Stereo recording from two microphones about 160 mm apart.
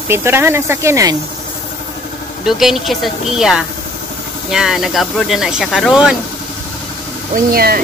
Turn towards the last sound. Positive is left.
turn(degrees=-65)  # may be behind; listen again after turning